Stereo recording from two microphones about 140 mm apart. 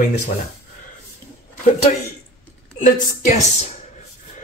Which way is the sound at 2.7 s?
60° left (ahead or behind).